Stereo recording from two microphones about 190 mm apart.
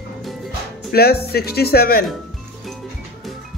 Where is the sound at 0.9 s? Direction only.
55° left (ahead or behind).